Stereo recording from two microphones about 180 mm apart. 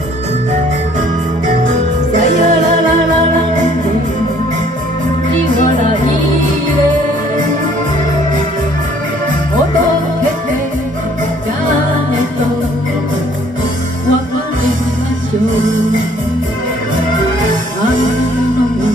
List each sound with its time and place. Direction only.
2.1 s music: 45° right (ahead or behind)